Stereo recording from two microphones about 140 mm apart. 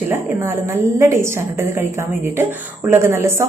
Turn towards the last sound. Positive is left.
turn(degrees=-20)  # may be behind; listen again after turning